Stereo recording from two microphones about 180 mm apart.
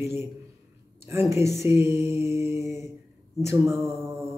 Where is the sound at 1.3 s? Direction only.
15° right (ahead or behind).